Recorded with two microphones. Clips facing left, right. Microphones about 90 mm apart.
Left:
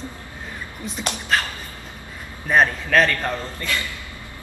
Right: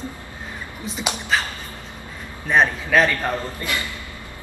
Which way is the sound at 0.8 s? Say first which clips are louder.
Right 1 dB; centre (ahead or behind).